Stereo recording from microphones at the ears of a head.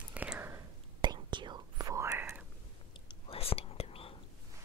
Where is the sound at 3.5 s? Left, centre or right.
Left.